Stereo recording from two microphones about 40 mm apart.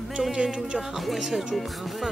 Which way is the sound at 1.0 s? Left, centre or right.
Centre.